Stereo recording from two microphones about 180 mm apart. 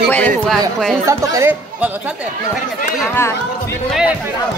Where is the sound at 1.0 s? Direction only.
15° right (ahead or behind).